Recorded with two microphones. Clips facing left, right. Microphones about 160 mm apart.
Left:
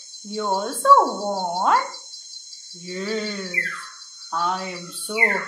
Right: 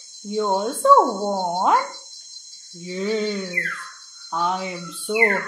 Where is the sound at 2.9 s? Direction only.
20° right (ahead or behind).